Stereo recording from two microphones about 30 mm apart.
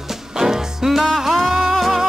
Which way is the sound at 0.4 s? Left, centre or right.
Centre.